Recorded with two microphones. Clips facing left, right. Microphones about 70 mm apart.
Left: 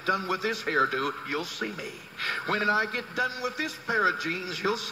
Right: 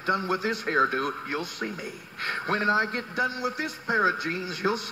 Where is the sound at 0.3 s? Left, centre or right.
Right.